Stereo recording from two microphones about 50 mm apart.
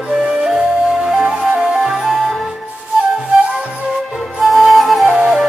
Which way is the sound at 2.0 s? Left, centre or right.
Centre.